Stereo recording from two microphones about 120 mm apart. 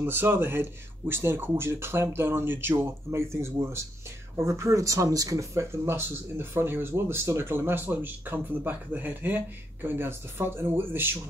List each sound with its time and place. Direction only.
0.0 s speech: 20° right (ahead or behind)